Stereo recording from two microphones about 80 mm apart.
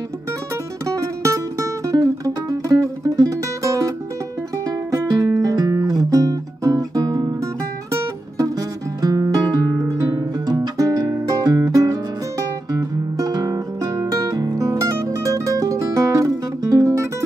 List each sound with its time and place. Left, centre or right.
0.8 s music: right
4.9 s music: right
8.4 s music: right
10.4 s music: right